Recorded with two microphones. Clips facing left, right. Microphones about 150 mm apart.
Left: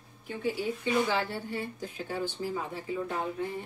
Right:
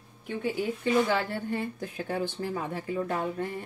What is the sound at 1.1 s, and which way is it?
Speech, 50° right (ahead or behind).